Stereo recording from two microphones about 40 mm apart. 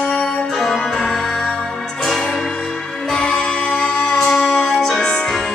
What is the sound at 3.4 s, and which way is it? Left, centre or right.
Music, left.